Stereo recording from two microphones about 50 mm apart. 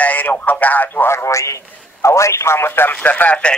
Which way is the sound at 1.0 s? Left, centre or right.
Left.